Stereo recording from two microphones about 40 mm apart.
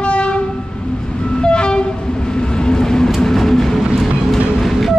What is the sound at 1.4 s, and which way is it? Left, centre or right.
Train, left.